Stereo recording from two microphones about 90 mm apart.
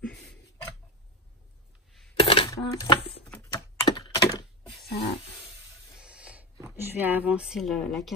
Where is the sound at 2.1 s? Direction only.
80° left.